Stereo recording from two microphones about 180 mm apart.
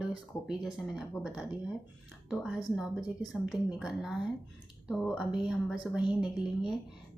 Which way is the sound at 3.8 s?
Centre (ahead or behind).